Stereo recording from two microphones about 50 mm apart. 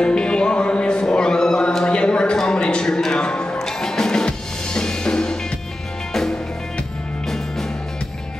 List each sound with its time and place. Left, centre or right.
0.0 s music: centre
2.0 s a sound: left
2.3 s music: centre